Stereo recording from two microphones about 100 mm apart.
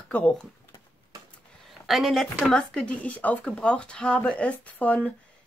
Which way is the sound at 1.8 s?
Centre (ahead or behind).